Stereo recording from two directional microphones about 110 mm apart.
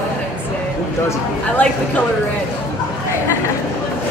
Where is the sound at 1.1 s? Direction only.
15° left (ahead or behind).